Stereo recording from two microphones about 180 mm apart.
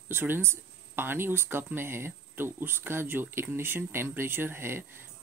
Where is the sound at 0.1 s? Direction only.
10° right (ahead or behind).